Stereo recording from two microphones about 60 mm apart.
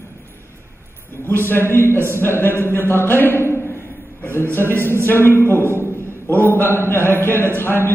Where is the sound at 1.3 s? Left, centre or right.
Left.